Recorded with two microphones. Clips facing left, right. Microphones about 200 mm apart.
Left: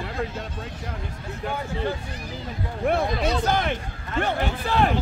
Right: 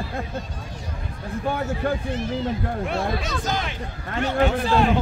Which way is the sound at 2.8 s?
60° left (ahead or behind).